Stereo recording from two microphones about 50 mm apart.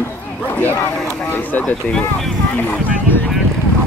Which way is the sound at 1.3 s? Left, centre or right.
Left.